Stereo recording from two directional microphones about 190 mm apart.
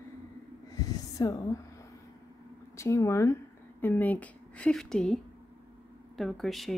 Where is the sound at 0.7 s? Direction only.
20° left (ahead or behind).